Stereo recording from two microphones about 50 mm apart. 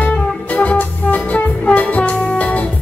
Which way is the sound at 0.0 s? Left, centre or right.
Left.